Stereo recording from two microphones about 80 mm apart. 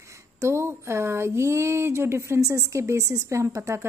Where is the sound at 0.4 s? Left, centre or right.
Right.